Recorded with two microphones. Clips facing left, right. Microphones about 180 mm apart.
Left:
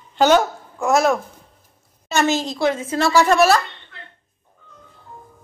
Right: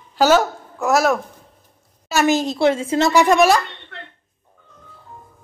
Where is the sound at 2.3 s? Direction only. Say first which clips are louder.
Right 3 dB; 20° right (ahead or behind).